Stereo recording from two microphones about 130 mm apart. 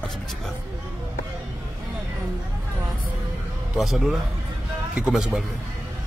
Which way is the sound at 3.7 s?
Centre (ahead or behind).